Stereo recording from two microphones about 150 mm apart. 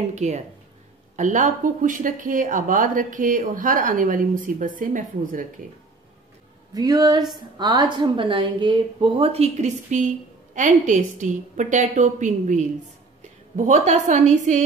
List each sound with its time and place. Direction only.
0.1 s speech: 50° right (ahead or behind)
6.7 s speech: 25° right (ahead or behind); by 14.6 s 50° right (ahead or behind)